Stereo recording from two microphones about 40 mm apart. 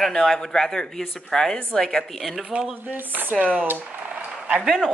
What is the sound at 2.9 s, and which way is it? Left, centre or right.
Speech, right.